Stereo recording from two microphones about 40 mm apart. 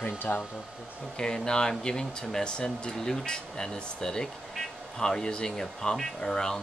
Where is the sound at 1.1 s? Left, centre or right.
Centre.